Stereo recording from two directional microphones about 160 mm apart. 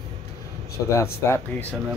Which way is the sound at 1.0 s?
15° left (ahead or behind).